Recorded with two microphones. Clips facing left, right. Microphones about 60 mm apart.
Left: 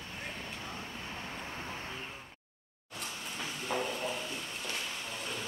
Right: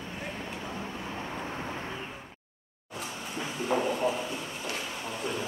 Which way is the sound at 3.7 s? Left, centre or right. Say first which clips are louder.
Right 8 dB; centre.